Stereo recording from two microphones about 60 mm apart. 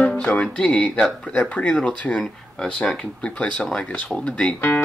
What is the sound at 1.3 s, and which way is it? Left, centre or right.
Speech, left.